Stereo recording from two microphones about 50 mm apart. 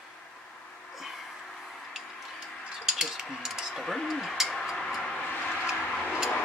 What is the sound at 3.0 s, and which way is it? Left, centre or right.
Speech, centre.